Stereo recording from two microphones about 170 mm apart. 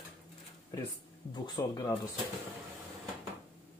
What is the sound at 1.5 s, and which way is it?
Speech, 20° left (ahead or behind).